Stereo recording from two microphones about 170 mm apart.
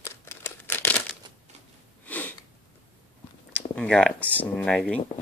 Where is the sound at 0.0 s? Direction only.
15° left (ahead or behind).